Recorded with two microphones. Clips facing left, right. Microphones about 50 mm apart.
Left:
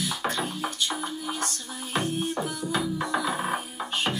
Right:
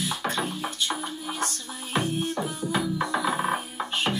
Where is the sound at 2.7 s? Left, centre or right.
Right.